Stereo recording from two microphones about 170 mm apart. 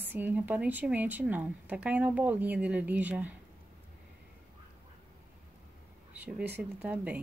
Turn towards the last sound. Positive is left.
turn(degrees=-10)  # may be behind; listen again after turning